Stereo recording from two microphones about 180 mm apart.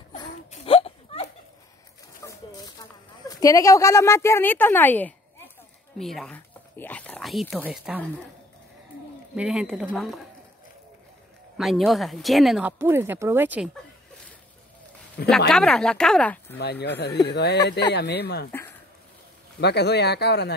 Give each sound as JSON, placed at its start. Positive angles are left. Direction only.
{"t": 0.1, "sound": "a sound", "side_deg": 30}
{"t": 2.2, "sound": "a sound", "side_deg": 20}
{"t": 5.9, "sound": "speech", "side_deg": 0}
{"t": 9.3, "sound": "speech", "side_deg": -5}
{"t": 11.5, "sound": "speech", "side_deg": 0}
{"t": 15.2, "sound": "speech", "side_deg": 5}
{"t": 16.5, "sound": "speech", "side_deg": 65}
{"t": 18.5, "sound": "a sound", "side_deg": 10}
{"t": 19.6, "sound": "speech", "side_deg": 65}